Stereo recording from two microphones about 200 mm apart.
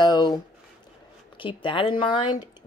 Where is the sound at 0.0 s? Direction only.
20° left (ahead or behind).